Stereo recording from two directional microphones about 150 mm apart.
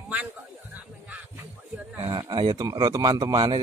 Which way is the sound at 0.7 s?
10° right (ahead or behind).